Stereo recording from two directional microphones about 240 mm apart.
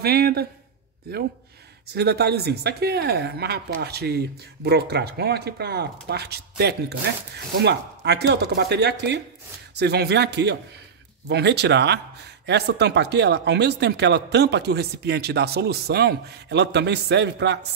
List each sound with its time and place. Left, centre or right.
0.0 s speech: right
2.0 s speech: right